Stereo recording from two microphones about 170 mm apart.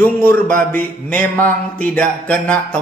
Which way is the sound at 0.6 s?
10° left (ahead or behind).